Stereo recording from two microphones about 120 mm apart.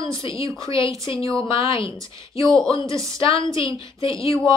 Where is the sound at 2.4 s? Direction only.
5° left (ahead or behind).